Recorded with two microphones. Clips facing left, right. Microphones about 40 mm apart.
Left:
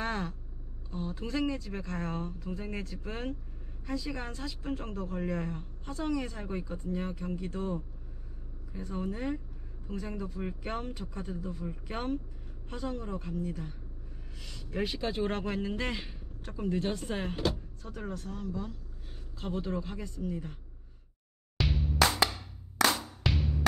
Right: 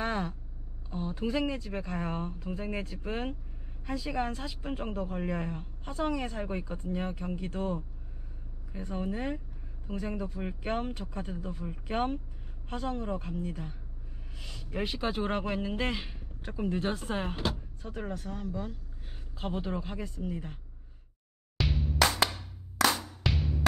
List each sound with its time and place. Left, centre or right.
0.0 s vehicle: centre
0.8 s speech: centre
8.7 s speech: centre
14.4 s speech: centre
21.5 s music: centre
23.2 s music: centre